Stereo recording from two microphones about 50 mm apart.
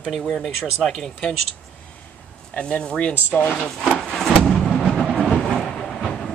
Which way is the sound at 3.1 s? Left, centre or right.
Left.